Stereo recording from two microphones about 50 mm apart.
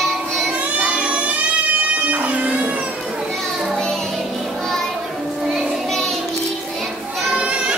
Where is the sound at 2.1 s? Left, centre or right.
Right.